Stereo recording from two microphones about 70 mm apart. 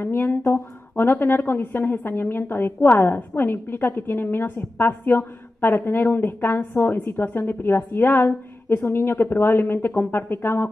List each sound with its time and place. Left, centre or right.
0.0 s a woman's voice: left